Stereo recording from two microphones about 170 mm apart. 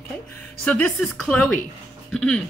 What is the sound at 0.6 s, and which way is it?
Speech, 5° left (ahead or behind).